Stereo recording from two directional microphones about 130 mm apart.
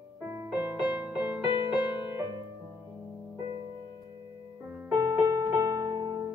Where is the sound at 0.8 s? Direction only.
10° right (ahead or behind).